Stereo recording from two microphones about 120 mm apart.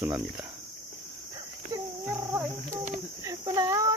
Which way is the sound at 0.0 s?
20° right (ahead or behind).